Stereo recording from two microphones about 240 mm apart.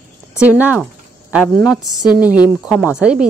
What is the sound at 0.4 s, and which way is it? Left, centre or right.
Speech, centre.